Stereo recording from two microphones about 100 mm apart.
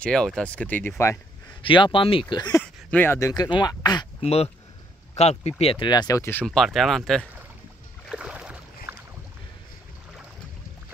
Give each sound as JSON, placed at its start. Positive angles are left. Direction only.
{"t": 0.0, "sound": "speech", "side_deg": 5}
{"t": 1.6, "sound": "speech", "side_deg": 60}
{"t": 2.6, "sound": "a sound", "side_deg": 15}
{"t": 3.2, "sound": "speech", "side_deg": 35}
{"t": 3.4, "sound": "speech", "side_deg": 45}
{"t": 4.2, "sound": "speech", "side_deg": 90}
{"t": 5.6, "sound": "speech", "side_deg": 70}
{"t": 5.9, "sound": "speech", "side_deg": 40}
{"t": 6.4, "sound": "speech", "side_deg": 0}
{"t": 8.1, "sound": "boat", "side_deg": -10}